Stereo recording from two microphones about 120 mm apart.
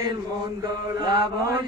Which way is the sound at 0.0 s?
30° right (ahead or behind).